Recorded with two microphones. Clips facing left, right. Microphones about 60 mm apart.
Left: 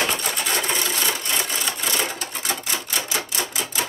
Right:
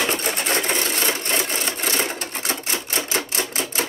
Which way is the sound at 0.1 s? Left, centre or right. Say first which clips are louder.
Right 2 dB; right.